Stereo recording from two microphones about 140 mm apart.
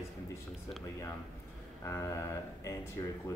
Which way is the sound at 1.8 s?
20° left (ahead or behind).